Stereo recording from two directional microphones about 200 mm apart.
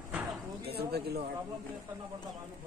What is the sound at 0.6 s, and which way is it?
Speech, 50° right (ahead or behind).